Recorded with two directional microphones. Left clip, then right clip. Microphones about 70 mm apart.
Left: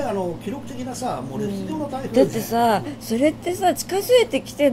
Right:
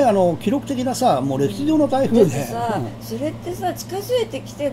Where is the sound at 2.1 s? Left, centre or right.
Left.